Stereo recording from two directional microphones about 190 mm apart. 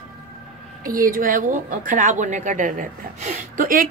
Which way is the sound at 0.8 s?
45° right (ahead or behind).